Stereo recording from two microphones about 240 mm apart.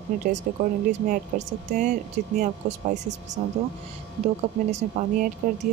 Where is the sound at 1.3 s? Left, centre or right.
Right.